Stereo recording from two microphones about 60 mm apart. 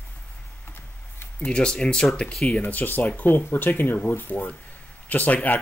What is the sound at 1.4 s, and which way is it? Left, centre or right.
Speech, centre.